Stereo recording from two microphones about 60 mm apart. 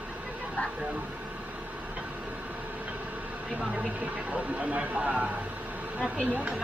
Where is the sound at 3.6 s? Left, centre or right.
Centre.